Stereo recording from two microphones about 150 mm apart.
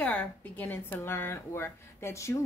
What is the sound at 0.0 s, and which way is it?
A woman's voice, 10° left (ahead or behind).